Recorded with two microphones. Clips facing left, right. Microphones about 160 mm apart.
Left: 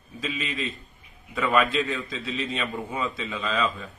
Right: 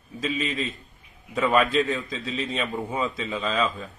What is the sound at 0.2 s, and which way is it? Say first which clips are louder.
Speech: right 3 dB; 45° right (ahead or behind).